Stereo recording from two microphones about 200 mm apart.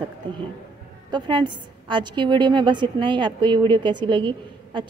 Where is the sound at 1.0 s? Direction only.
20° right (ahead or behind).